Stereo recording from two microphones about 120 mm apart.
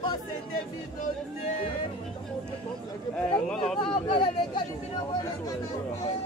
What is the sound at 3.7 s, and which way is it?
Speech, 45° left (ahead or behind).